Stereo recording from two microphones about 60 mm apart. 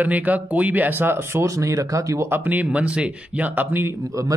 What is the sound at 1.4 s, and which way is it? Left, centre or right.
Speech, right.